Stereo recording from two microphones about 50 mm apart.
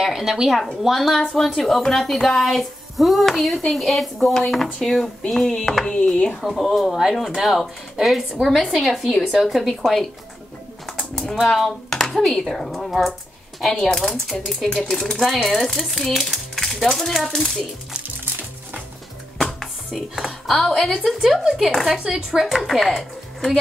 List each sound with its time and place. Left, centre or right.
0.0 s speech: centre
1.2 s speech: centre
1.5 s speech: centre; by 6.3 s left
6.4 s speech: centre
19.3 s music: centre
20.8 s a woman's voice: centre